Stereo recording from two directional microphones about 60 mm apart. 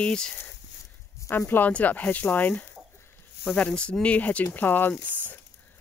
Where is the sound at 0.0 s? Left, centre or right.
Centre.